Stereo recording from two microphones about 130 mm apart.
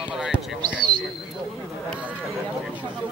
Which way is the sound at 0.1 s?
5° right (ahead or behind).